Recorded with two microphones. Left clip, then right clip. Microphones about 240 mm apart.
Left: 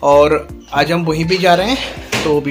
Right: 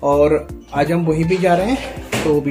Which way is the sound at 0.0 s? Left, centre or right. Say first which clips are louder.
Left 4 dB; centre.